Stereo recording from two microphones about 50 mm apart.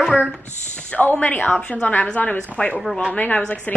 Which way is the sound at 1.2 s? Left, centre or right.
Left.